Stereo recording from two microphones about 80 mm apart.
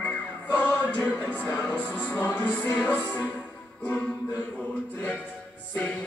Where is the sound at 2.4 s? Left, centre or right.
Centre.